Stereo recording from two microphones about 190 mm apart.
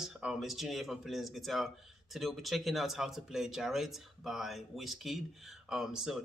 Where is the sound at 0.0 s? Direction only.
5° right (ahead or behind).